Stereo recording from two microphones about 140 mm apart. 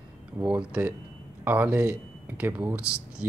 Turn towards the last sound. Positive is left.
turn(degrees=-10)  # may be behind; listen again after turning